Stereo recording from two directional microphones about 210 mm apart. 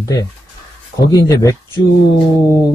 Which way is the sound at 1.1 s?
15° left (ahead or behind).